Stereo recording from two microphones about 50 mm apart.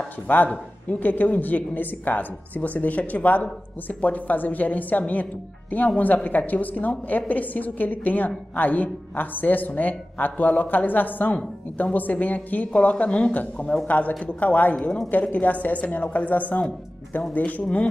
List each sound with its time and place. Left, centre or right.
0.3 s a woman's voice: left
14.8 s speech: centre
15.0 s a woman's voice: left